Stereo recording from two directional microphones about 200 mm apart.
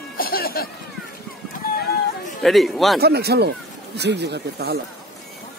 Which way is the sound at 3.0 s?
55° right (ahead or behind).